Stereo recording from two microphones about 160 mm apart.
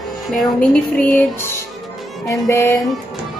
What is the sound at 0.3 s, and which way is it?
Speech, 10° left (ahead or behind).